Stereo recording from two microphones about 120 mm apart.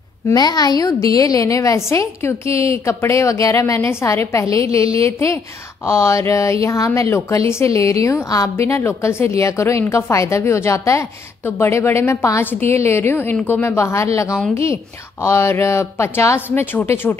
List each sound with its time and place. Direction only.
0.3 s a woman's voice: 35° left (ahead or behind); by 17.2 s 20° left (ahead or behind)